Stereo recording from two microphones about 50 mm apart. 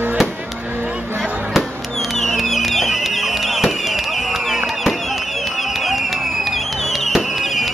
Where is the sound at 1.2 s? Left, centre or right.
Centre.